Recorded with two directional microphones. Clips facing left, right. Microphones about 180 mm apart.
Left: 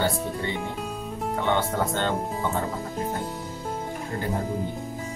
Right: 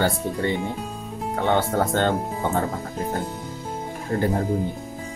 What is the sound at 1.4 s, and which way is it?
Speech, 45° right (ahead or behind).